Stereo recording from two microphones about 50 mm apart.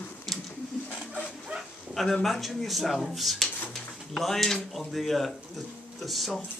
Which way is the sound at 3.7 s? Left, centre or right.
Centre.